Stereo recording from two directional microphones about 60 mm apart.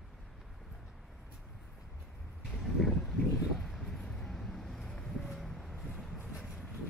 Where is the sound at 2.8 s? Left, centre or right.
Centre.